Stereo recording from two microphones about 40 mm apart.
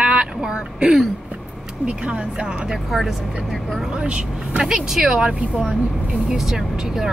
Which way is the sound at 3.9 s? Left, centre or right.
Right.